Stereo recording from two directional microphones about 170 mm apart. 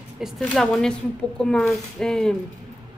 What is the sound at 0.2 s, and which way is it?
Speech, centre (ahead or behind).